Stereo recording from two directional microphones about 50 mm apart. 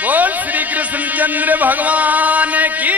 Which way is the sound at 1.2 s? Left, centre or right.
Right.